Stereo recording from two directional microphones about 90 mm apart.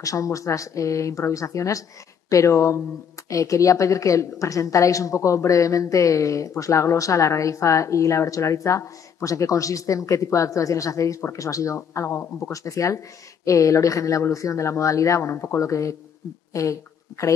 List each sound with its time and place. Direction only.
0.0 s a woman's voice: 40° left (ahead or behind)